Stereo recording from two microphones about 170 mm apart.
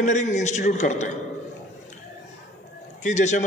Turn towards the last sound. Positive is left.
turn(degrees=45)  # may be behind; listen again after turning